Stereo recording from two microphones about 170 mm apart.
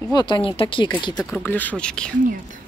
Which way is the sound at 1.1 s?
10° left (ahead or behind).